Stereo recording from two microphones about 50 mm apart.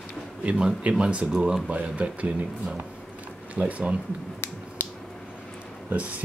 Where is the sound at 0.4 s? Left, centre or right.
Right.